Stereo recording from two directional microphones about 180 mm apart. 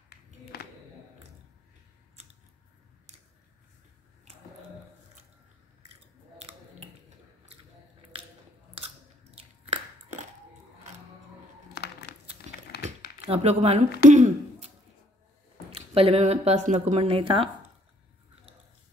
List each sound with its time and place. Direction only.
6.3 s scissors: 35° right (ahead or behind)
8.7 s biting: 30° right (ahead or behind)
11.7 s a sound: 65° left (ahead or behind)
12.5 s a sound: 40° right (ahead or behind)
12.8 s computer keyboard: 35° right (ahead or behind)
14.0 s speech: 40° right (ahead or behind)
15.7 s speech: 30° right (ahead or behind)